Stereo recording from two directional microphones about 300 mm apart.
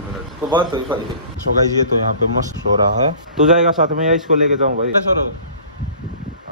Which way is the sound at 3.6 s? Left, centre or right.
Right.